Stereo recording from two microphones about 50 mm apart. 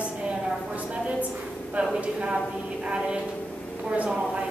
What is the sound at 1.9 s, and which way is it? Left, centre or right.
A woman's voice, right.